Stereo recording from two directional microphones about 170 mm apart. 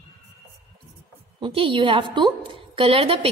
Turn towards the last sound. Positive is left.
turn(degrees=-35)  # may be behind; listen again after turning